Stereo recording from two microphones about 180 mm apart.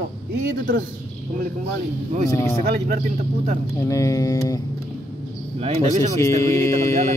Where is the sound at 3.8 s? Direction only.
15° left (ahead or behind).